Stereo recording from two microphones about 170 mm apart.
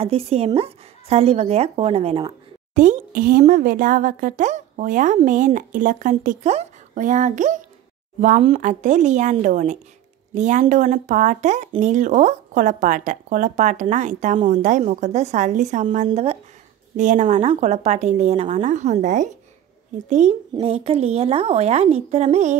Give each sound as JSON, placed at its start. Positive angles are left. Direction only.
{"t": 0.0, "sound": "speech", "side_deg": -35}
{"t": 2.7, "sound": "a woman's voice", "side_deg": -45}
{"t": 8.5, "sound": "a woman's voice", "side_deg": -45}